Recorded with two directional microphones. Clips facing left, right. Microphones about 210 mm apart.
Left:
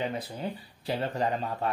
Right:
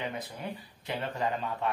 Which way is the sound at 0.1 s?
30° left (ahead or behind).